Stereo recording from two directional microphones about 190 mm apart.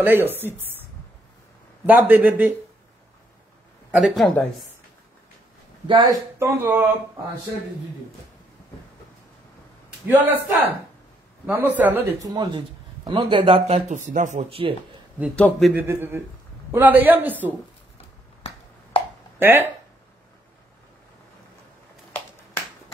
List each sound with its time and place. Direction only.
0.0 s a man's voice: 10° right (ahead or behind)
1.9 s a man's voice: 10° right (ahead or behind)
3.9 s speech: centre (ahead or behind)
5.9 s a man's voice: 25° right (ahead or behind)
6.4 s a man's voice: 10° right (ahead or behind)
10.0 s a man's voice: 10° right (ahead or behind); by 14.8 s 30° right (ahead or behind)
15.3 s speech: 5° left (ahead or behind)
15.7 s a man's voice: 15° right (ahead or behind)
18.4 s finger snapping: 30° left (ahead or behind)
19.3 s speech: 10° right (ahead or behind)